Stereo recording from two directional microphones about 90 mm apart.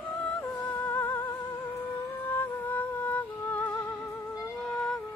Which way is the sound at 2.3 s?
20° left (ahead or behind).